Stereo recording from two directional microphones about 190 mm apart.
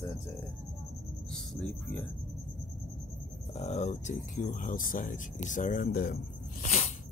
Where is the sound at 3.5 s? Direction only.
35° left (ahead or behind); by 6.2 s 50° left (ahead or behind).